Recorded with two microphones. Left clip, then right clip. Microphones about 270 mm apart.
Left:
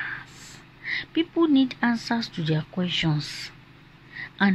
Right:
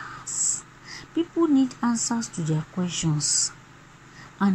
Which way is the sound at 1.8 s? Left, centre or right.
Left.